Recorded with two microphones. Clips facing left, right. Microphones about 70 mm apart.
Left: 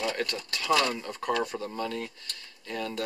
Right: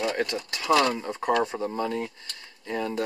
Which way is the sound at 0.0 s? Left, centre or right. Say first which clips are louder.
Right 4 dB; centre.